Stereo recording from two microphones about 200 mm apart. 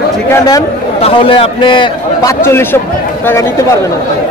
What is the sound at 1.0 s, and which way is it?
A man's voice, 30° left (ahead or behind).